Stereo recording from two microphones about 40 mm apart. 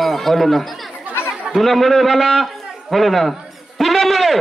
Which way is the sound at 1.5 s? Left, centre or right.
Centre.